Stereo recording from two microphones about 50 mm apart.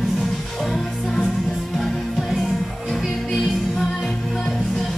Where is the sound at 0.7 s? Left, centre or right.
Centre.